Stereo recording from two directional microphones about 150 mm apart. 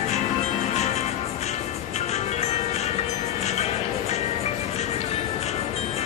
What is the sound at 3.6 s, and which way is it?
Music, 45° left (ahead or behind).